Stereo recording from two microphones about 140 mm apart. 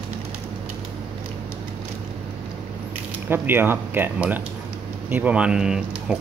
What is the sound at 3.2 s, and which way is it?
Speech, 15° right (ahead or behind).